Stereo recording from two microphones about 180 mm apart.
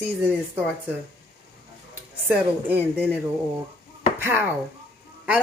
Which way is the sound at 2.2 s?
10° right (ahead or behind).